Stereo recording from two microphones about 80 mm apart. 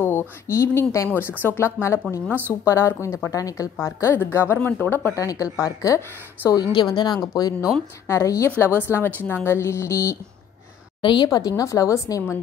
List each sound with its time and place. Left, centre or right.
0.5 s speech: left
3.8 s a woman's voice: left
5.1 s speech: left
6.5 s a woman's voice: left
7.3 s a woman's voice: left
8.1 s a woman's voice: left
11.0 s a woman's voice: left
11.2 s a woman's voice: left